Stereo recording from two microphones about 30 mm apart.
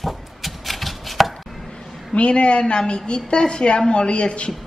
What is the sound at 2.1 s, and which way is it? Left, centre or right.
A woman's voice, left.